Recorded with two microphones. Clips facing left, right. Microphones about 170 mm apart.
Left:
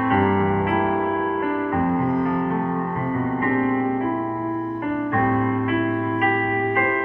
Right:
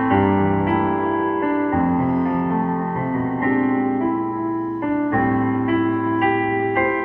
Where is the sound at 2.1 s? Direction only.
25° right (ahead or behind).